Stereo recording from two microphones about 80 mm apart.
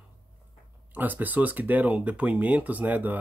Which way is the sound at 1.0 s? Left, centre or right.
Right.